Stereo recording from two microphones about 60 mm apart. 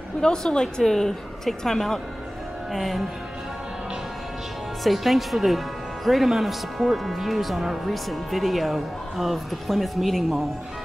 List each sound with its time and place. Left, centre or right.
0.2 s a woman's voice: centre
4.8 s speech: centre